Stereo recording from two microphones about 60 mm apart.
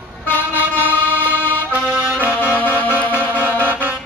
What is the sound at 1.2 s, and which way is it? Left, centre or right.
Music, right.